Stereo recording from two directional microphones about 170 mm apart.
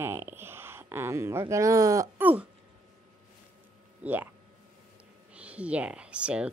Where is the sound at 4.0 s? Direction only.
10° right (ahead or behind).